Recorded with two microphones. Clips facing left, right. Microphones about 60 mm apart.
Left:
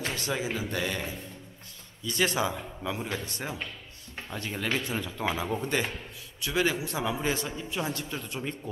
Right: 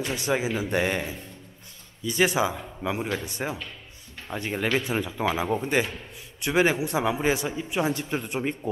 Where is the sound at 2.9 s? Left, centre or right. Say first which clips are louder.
Right 5 dB; right.